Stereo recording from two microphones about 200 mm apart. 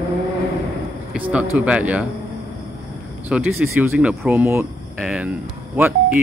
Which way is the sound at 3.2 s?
10° right (ahead or behind).